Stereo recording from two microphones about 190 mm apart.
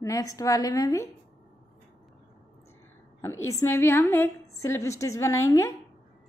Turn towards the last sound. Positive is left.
turn(degrees=15)  # may be behind; listen again after turning